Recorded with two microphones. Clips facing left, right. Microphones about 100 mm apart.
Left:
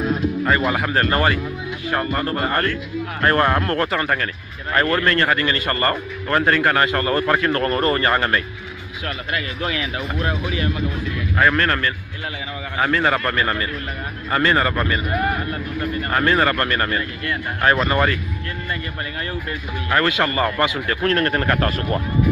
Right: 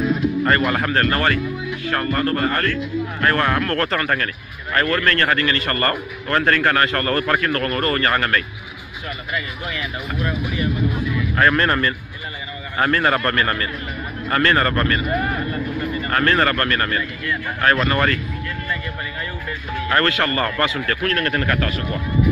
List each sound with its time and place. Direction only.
0.9 s a man's voice: 20° left (ahead or behind)
10.2 s speech: 90° left
11.3 s a man's voice: 5° left (ahead or behind)
11.6 s speech: 10° right (ahead or behind)
12.7 s a man's voice: 5° left (ahead or behind)
16.1 s speech: 15° left (ahead or behind)
19.9 s a man's voice: 15° left (ahead or behind)
21.5 s speech: 35° left (ahead or behind)